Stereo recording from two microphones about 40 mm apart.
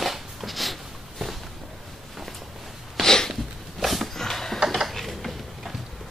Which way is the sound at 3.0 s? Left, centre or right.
Centre.